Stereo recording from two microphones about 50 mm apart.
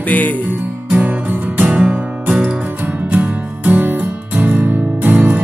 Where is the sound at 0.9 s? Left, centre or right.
Right.